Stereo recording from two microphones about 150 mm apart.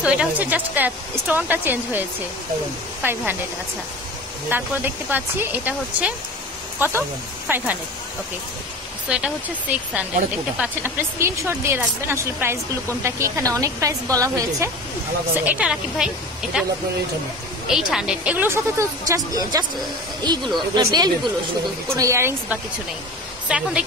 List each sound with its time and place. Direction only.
0.0 s speech: 10° right (ahead or behind)
4.5 s speech: 15° right (ahead or behind)
9.1 s a woman's voice: 5° right (ahead or behind); by 14.7 s 20° right (ahead or behind)
15.4 s a woman's voice: 5° right (ahead or behind); by 19.6 s 25° right (ahead or behind)
20.7 s a woman's voice: 25° right (ahead or behind)
23.5 s a woman's voice: 5° right (ahead or behind)